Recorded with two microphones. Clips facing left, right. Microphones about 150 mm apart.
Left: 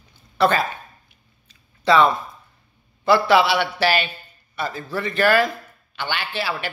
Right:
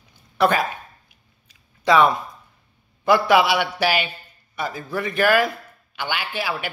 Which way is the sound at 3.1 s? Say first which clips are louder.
Even; 15° right (ahead or behind).